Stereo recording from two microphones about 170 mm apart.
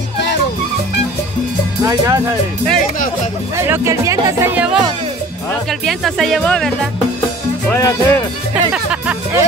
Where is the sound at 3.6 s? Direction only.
15° right (ahead or behind).